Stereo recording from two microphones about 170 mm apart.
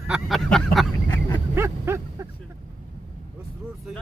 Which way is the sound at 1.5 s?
15° right (ahead or behind).